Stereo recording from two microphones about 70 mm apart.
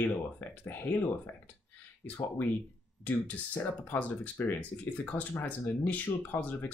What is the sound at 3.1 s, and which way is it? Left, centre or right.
Speech, left.